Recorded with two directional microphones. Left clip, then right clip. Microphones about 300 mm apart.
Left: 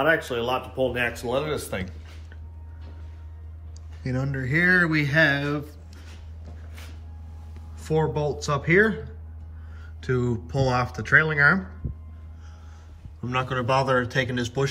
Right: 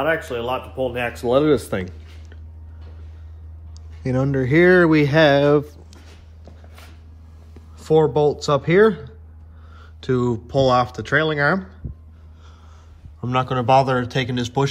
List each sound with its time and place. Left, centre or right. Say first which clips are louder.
0.0 s speech: right 1 dB; centre
1.2 s speech: right 10 dB; right
4.0 s speech: right 9 dB; right
7.7 s speech: right 9 dB; centre
13.2 s speech: right 5 dB; centre